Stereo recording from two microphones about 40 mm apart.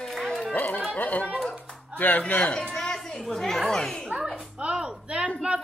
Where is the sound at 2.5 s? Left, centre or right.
Left.